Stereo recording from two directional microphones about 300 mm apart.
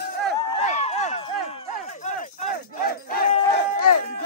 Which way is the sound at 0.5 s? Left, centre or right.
Left.